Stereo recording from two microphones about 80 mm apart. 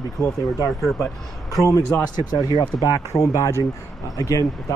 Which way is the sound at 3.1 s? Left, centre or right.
Left.